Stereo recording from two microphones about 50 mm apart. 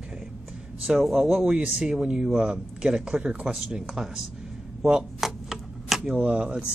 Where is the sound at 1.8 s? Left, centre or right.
Centre.